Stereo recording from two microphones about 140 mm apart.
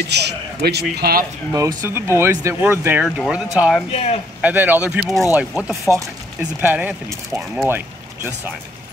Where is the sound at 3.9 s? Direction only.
45° left (ahead or behind).